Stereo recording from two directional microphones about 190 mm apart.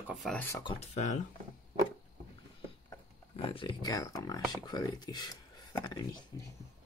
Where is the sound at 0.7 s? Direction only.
35° left (ahead or behind).